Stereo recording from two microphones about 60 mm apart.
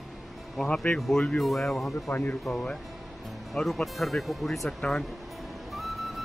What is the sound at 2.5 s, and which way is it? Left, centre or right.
Speech, centre.